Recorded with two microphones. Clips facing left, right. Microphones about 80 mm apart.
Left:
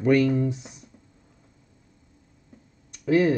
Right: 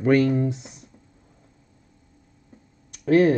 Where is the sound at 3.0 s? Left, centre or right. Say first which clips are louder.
Right 3 dB; right.